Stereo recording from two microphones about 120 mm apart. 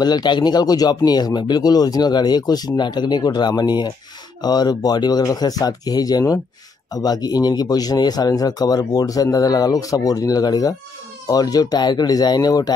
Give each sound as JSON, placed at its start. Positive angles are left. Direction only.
{"t": 0.0, "sound": "speech", "side_deg": 35}